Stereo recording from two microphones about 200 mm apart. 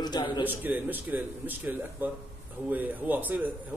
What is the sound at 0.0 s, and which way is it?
Speech, 20° left (ahead or behind).